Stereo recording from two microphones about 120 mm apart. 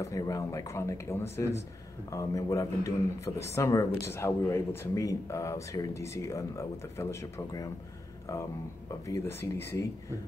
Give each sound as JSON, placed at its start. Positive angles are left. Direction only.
{"t": 0.0, "sound": "speech", "side_deg": 30}
{"t": 9.0, "sound": "speech", "side_deg": 25}